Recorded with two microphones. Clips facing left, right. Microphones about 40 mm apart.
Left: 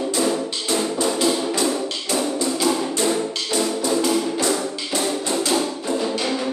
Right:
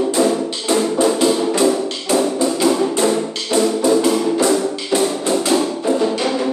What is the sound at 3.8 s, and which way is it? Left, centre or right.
Music, centre.